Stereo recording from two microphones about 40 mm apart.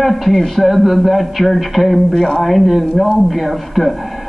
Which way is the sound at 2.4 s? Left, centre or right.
Centre.